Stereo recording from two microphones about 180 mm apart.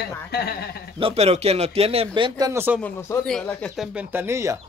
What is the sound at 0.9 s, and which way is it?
Speech, 35° right (ahead or behind).